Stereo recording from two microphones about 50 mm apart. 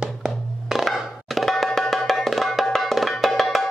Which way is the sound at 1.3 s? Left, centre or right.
Centre.